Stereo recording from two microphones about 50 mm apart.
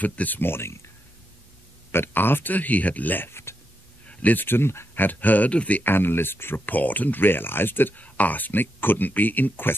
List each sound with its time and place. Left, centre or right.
0.0 s speech: left
0.4 s speech: left
1.9 s speech: left
3.3 s a sound: left
4.1 s speech: left
4.5 s speech: left
4.9 s speech: left
5.9 s speech: left
6.6 s speech: left